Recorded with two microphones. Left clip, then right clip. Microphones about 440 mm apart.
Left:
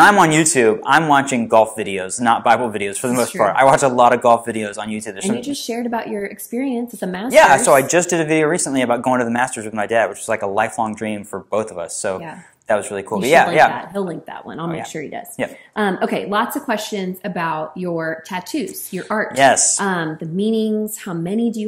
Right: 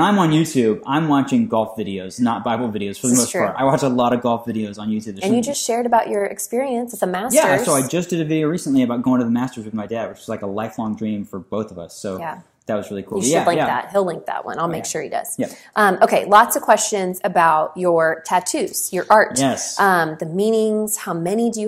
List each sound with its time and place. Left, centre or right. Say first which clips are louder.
0.0 s speech: left 6 dB; left
5.2 s a woman's voice: right 5 dB; right
7.3 s speech: left 6 dB; left
13.7 s a woman's voice: right 5 dB; right
19.3 s speech: left 8 dB; left
19.8 s a woman's voice: right 5 dB; right